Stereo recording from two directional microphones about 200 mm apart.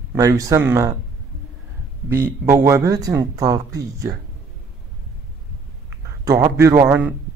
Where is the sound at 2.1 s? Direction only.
10° right (ahead or behind).